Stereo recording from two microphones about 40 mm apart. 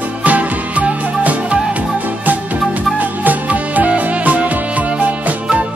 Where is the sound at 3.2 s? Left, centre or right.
Right.